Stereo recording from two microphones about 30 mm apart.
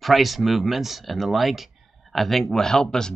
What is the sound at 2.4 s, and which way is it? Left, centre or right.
Speech, centre.